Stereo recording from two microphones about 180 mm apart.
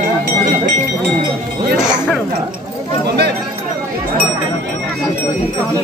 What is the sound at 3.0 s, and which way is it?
Speech, 65° right (ahead or behind).